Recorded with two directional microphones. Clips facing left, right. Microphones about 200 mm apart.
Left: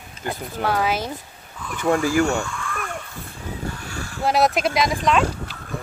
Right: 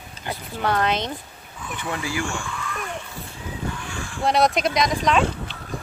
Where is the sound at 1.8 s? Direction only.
45° left (ahead or behind).